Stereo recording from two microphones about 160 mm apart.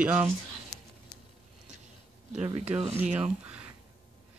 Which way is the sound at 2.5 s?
40° right (ahead or behind).